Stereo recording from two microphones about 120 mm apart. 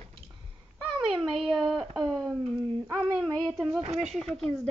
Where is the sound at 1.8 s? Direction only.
5° left (ahead or behind).